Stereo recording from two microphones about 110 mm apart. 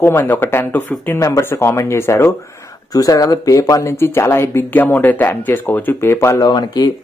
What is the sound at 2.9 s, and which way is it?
Speech, 30° left (ahead or behind).